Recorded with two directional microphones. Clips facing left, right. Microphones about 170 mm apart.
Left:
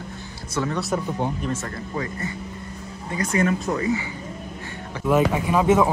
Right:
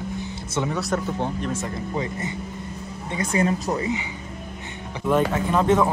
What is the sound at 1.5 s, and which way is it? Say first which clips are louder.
Speech: right 1 dB; 15° right (ahead or behind).